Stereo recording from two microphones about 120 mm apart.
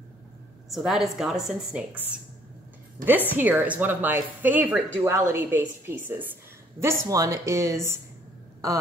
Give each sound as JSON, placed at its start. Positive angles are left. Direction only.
{"t": 0.7, "sound": "a woman's voice", "side_deg": 0}
{"t": 3.3, "sound": "a woman's voice", "side_deg": -15}
{"t": 6.8, "sound": "a woman's voice", "side_deg": -25}